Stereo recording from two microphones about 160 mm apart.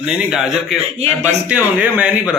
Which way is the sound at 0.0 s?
5° right (ahead or behind).